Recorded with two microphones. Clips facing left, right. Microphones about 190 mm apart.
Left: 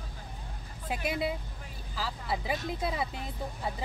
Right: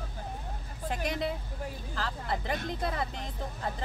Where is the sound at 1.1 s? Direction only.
5° left (ahead or behind).